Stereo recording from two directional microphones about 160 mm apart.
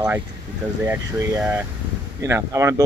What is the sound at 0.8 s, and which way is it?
Speech, 15° right (ahead or behind).